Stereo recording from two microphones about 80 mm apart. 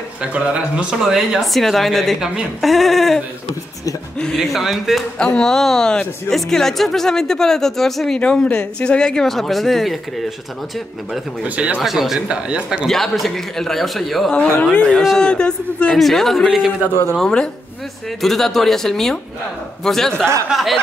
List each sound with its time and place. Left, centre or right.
0.2 s speech: centre
4.2 s speech: centre
5.2 s speech: centre
11.4 s speech: centre
11.8 s speech: centre
12.8 s speech: centre
14.3 s speech: centre
14.9 s speech: centre
15.1 s speech: centre
17.1 s speech: centre